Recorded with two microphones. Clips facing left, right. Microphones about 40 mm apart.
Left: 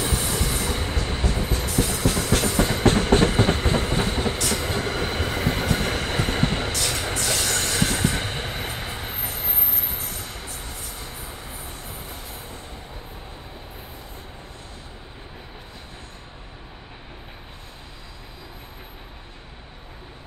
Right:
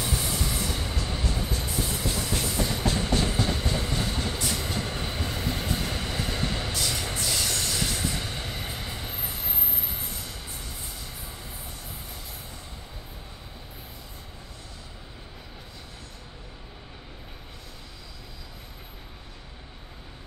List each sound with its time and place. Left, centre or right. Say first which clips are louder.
0.0 s train: left 4 dB; left
4.4 s train: left 5 dB; left
9.4 s train: left 4 dB; left
10.2 s train: left 4 dB; left